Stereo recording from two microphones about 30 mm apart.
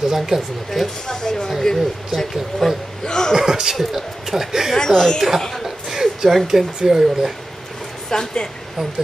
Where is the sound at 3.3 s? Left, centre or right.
Centre.